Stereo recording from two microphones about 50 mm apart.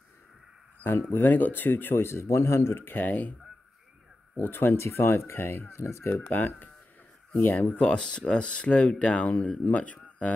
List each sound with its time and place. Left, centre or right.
1.1 s speech: left
2.2 s a man's voice: left
2.8 s speech: left
4.4 s speech: left
4.8 s speech: left
5.4 s speech: left
5.7 s speech: left
6.3 s speech: left
7.8 s speech: centre